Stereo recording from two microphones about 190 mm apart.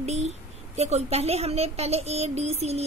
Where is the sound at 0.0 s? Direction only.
35° right (ahead or behind).